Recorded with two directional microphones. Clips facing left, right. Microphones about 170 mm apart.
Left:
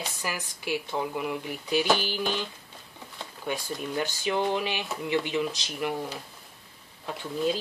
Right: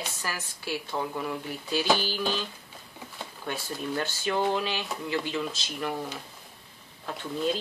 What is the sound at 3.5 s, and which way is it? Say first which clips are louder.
Speech: left 1 dB; 15° left (ahead or behind).